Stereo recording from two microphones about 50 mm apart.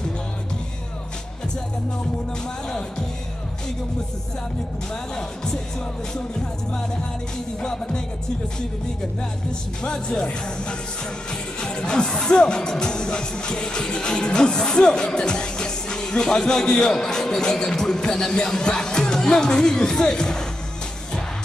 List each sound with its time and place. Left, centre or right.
5.1 s speech: centre
7.6 s speech: centre
9.8 s speech: centre